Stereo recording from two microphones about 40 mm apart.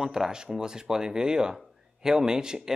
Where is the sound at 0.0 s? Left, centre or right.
Centre.